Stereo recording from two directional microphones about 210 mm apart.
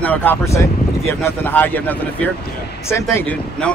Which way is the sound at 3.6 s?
5° left (ahead or behind).